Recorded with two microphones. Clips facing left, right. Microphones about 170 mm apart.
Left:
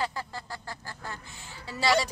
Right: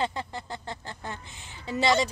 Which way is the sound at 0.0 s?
20° right (ahead or behind).